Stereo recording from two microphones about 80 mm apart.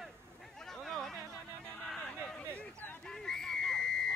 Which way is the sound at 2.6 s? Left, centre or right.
Left.